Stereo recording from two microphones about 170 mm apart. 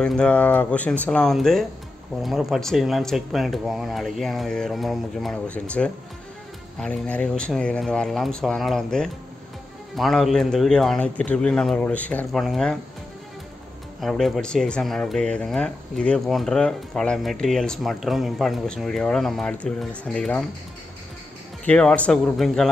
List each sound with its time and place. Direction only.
0.0 s speech: 5° left (ahead or behind)
14.0 s speech: centre (ahead or behind)
21.6 s speech: 5° left (ahead or behind)